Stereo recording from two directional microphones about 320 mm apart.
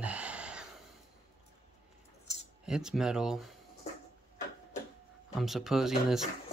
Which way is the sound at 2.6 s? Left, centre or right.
Centre.